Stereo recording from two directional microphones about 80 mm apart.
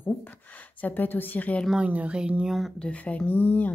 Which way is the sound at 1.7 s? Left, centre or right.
Centre.